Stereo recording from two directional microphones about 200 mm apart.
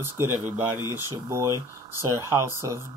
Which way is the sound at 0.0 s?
10° right (ahead or behind).